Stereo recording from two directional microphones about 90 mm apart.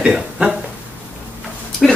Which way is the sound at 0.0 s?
10° right (ahead or behind).